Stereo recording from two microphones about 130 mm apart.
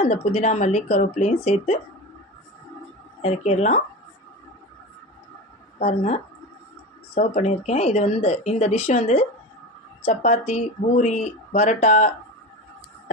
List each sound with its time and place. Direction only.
0.0 s speech: 55° left (ahead or behind)
3.2 s speech: 55° left (ahead or behind)
5.8 s speech: 55° left (ahead or behind)